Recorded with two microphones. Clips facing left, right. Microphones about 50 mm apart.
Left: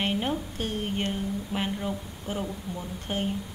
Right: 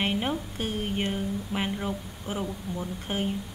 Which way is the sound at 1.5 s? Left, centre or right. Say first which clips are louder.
Even; centre.